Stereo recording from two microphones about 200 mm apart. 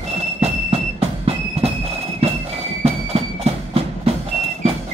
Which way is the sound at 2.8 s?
30° right (ahead or behind).